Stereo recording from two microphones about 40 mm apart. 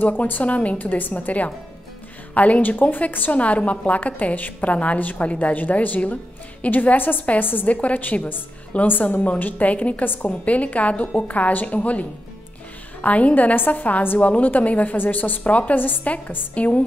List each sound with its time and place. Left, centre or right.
0.4 s a woman's voice: left
0.8 s a woman's voice: left
3.3 s a woman's voice: left
7.6 s a woman's voice: left
10.0 s a woman's voice: left
10.4 s a woman's voice: left
16.5 s a woman's voice: left